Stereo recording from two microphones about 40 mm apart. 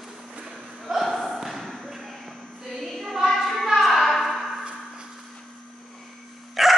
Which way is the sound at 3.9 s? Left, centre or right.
Centre.